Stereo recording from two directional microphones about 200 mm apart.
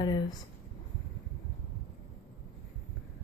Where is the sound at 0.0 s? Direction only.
20° left (ahead or behind).